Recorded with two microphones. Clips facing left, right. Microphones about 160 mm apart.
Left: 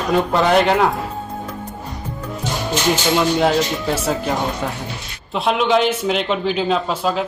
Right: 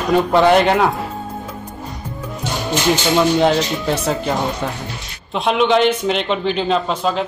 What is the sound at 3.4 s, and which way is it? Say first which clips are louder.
A man's voice: right 1 dB; centre (ahead or behind).